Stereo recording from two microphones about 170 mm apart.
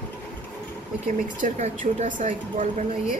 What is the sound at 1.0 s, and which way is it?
A woman's voice, 45° right (ahead or behind).